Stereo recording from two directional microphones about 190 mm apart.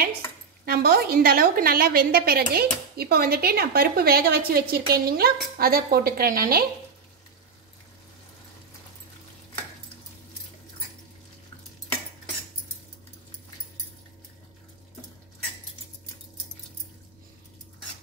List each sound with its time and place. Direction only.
0.7 s a woman's voice: 55° right (ahead or behind)